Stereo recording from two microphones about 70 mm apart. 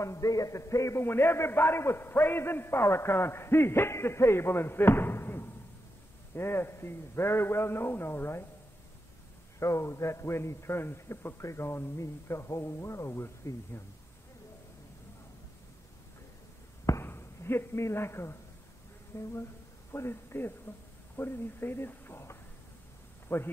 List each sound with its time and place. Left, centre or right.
0.0 s a man's voice: left
1.0 s a man's voice: left
9.6 s a man's voice: left
17.0 s a man's voice: left